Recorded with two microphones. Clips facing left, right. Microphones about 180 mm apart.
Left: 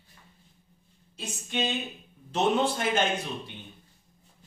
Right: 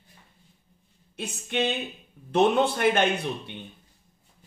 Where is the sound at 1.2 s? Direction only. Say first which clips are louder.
Right 4 dB; 60° right (ahead or behind).